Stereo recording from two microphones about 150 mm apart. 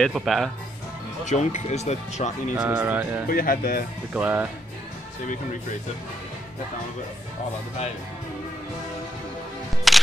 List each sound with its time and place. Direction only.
0.0 s speech: centre (ahead or behind)
1.2 s speech: 50° left (ahead or behind)
2.5 s speech: 15° right (ahead or behind)
3.3 s speech: 75° left (ahead or behind)
4.1 s speech: 10° right (ahead or behind)
9.9 s music: centre (ahead or behind)